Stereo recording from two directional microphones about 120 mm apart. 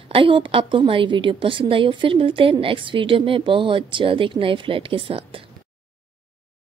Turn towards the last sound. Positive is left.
turn(degrees=-50)  # may be behind; listen again after turning